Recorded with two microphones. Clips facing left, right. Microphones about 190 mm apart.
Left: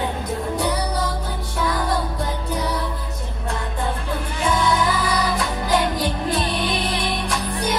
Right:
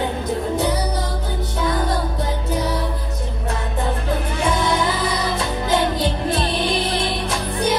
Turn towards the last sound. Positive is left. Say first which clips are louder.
# right 2 dB
turn(degrees=-25)  # may be behind; listen again after turning